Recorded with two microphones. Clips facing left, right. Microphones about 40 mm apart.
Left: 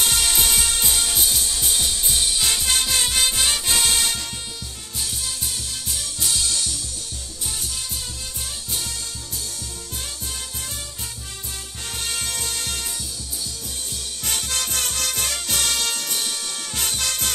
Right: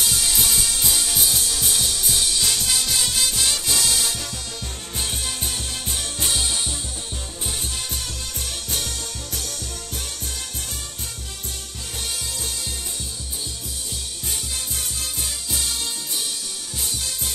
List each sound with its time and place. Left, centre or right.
0.0 s music: left
0.8 s music: centre; by 4.0 s left
4.9 s music: right
6.3 s music: right
8.7 s music: right
12.1 s music: left
14.2 s music: left